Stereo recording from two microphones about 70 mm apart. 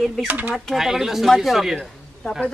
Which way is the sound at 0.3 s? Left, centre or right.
Right.